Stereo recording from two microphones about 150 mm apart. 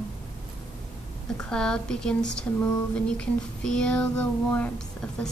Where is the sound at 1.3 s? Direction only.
5° left (ahead or behind).